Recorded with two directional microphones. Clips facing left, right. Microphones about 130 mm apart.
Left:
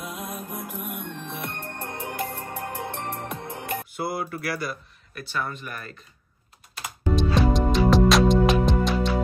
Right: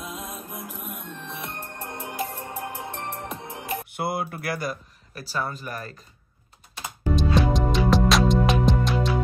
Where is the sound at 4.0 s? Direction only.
50° right (ahead or behind).